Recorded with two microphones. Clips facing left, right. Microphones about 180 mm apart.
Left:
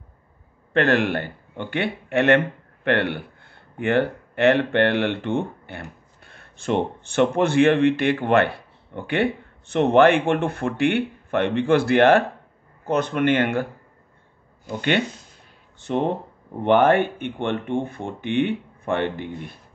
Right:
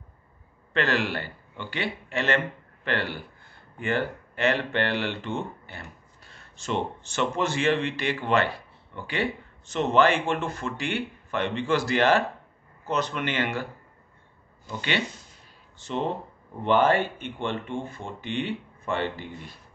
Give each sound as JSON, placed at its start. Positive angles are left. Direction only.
{"t": 0.7, "sound": "speech", "side_deg": 55}
{"t": 14.7, "sound": "speech", "side_deg": 55}